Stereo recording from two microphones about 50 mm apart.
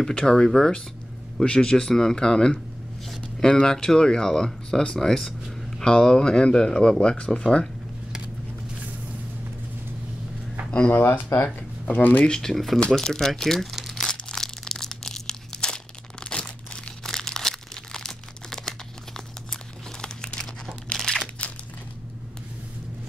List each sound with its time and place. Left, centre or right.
0.2 s speech: centre
11.0 s speech: left
11.9 s speech: left
12.3 s speech: centre
14.3 s crumpling: centre
21.4 s a sound: left